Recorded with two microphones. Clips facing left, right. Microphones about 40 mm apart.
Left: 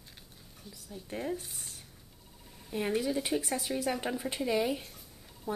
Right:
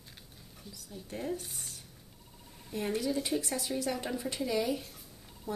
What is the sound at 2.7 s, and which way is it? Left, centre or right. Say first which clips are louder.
Speech: left 2 dB; centre.